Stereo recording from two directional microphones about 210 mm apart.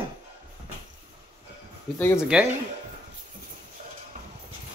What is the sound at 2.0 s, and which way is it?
Speech, 10° left (ahead or behind).